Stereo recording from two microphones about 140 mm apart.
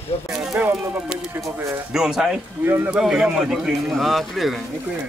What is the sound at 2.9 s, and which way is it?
A man's voice, 5° right (ahead or behind).